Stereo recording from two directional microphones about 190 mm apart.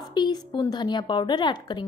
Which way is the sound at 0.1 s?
25° left (ahead or behind).